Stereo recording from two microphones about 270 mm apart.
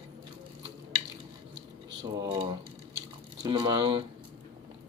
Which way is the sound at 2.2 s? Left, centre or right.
Centre.